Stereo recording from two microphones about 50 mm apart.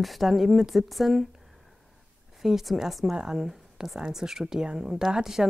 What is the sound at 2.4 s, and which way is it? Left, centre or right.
Speech, centre.